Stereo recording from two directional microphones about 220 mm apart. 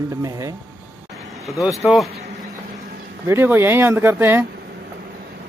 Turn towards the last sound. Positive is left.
turn(degrees=-10)  # may be behind; listen again after turning